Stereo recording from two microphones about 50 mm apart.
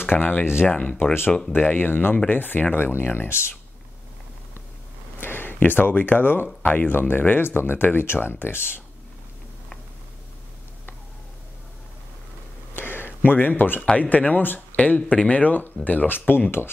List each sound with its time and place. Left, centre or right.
0.0 s speech: left
1.5 s speech: left
5.2 s speech: left
12.7 s a sound: left
13.9 s speech: left
15.0 s speech: left
16.3 s speech: left